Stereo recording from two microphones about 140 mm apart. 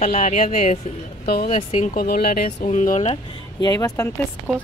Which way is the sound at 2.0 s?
90° left.